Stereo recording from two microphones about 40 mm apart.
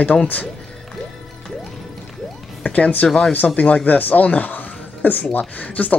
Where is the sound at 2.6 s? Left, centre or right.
Left.